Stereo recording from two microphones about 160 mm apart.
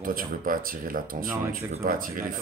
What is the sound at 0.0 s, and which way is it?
Speech, 60° right (ahead or behind).